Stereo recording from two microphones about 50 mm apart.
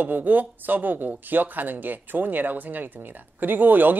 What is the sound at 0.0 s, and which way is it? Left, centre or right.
A man's voice, right.